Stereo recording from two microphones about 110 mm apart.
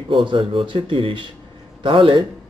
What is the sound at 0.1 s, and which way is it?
Speech, 50° right (ahead or behind).